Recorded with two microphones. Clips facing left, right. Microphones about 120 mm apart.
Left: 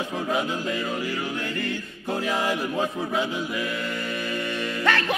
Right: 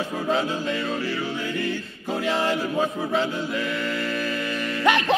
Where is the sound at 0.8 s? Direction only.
15° left (ahead or behind).